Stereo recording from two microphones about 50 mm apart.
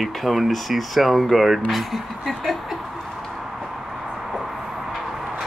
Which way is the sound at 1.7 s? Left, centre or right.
Centre.